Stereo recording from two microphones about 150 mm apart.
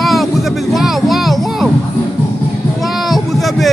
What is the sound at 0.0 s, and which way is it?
Music, centre (ahead or behind).